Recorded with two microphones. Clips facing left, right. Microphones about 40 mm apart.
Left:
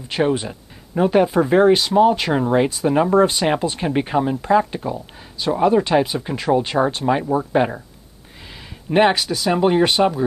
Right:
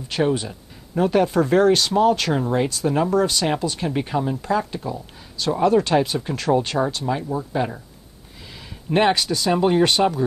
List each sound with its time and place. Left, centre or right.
0.1 s speech: left
6.8 s speech: left
8.4 s speech: centre